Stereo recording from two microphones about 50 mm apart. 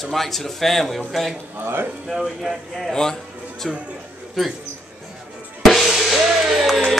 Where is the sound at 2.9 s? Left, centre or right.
Centre.